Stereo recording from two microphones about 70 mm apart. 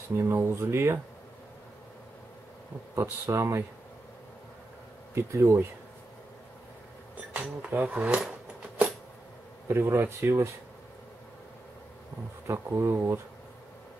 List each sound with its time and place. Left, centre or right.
0.2 s speech: right
3.0 s speech: right
5.1 s speech: right
7.3 s speech: right
9.7 s speech: right
12.4 s speech: right